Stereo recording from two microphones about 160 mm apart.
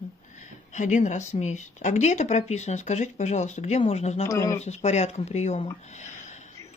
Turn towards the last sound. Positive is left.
turn(degrees=50)  # may be behind; listen again after turning